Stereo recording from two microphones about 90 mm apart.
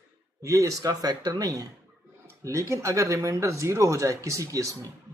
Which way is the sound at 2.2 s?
35° right (ahead or behind).